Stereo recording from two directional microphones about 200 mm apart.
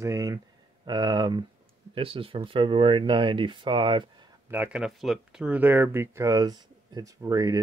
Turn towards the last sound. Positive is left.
turn(degrees=-20)  # may be behind; listen again after turning